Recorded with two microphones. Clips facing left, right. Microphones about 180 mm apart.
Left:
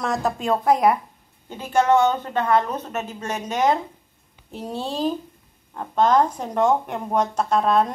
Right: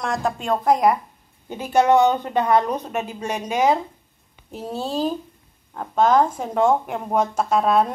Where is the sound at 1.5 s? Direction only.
15° right (ahead or behind).